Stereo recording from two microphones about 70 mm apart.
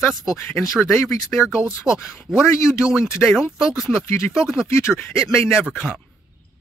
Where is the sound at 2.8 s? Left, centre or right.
Left.